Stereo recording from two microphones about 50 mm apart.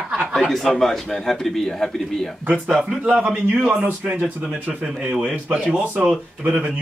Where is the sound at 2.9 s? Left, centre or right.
Right.